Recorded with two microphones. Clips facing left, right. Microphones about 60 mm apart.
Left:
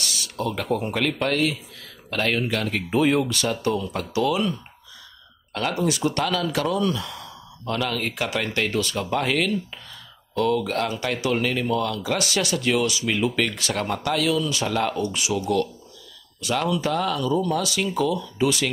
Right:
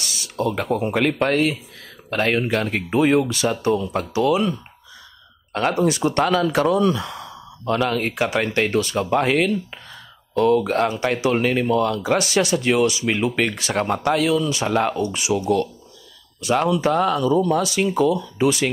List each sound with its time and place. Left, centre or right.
0.0 s a sound: centre
0.7 s speech: right
5.5 s speech: right
13.0 s speech: centre
13.4 s speech: right